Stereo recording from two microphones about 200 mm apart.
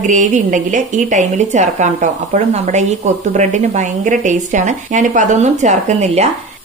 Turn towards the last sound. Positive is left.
turn(degrees=-35)  # may be behind; listen again after turning